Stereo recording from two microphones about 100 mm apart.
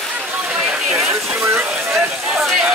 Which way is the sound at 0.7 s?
10° right (ahead or behind).